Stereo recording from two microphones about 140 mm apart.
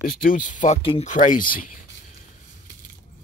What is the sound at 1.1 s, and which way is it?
Speech, 65° left (ahead or behind).